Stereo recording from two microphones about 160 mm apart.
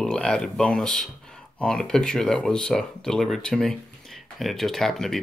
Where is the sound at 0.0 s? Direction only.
5° left (ahead or behind).